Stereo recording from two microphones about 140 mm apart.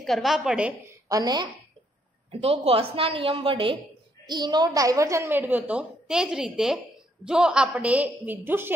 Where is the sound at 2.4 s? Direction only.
45° right (ahead or behind).